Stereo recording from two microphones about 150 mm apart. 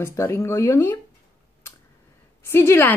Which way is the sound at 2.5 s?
15° left (ahead or behind).